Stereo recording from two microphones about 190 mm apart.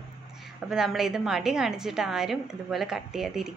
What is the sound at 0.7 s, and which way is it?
A woman's voice, centre (ahead or behind).